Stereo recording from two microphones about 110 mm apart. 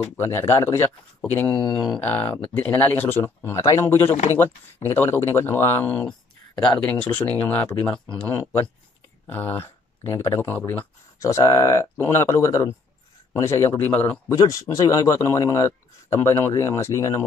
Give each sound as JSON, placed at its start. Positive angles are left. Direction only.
{"t": 0.2, "sound": "speech", "side_deg": 20}
{"t": 3.4, "sound": "speech", "side_deg": 25}
{"t": 8.3, "sound": "speech", "side_deg": 20}
{"t": 11.1, "sound": "speech", "side_deg": 30}
{"t": 14.3, "sound": "speech", "side_deg": 30}